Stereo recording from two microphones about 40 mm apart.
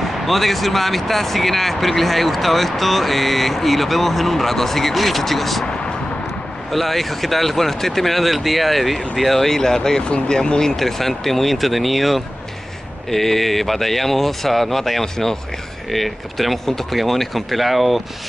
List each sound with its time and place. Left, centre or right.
0.0 s speech: centre
6.7 s speech: centre
10.0 s speech: left
10.8 s speech: centre